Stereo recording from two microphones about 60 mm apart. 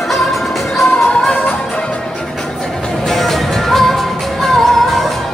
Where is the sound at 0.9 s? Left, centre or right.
Centre.